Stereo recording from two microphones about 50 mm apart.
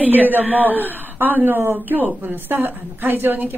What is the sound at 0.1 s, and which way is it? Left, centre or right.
A man's voice, right.